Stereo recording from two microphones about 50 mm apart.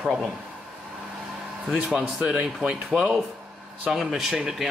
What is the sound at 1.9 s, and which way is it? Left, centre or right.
Speech, centre.